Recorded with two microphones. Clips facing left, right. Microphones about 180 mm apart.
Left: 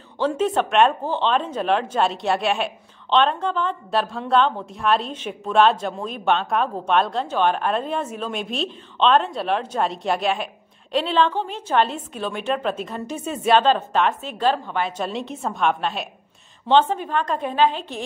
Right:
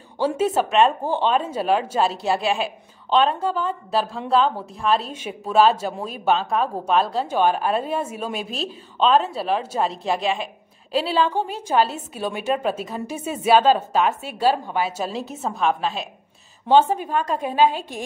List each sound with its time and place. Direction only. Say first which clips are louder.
0.2 s a woman's voice: even; 10° right (ahead or behind)